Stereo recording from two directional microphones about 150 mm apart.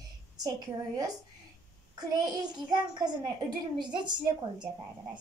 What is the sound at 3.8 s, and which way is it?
Speech, 30° right (ahead or behind).